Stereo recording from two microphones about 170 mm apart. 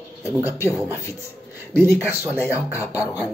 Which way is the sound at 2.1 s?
10° right (ahead or behind).